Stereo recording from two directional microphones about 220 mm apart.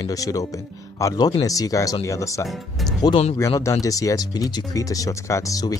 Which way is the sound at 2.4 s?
Centre (ahead or behind).